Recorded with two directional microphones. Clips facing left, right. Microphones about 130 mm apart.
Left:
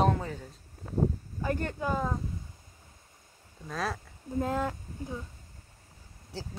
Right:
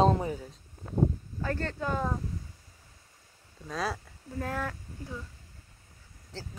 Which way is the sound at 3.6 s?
Centre (ahead or behind).